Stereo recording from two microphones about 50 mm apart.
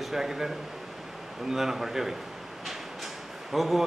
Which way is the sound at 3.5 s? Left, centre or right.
Centre.